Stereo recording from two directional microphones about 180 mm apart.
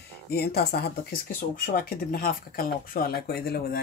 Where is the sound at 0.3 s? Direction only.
60° left (ahead or behind).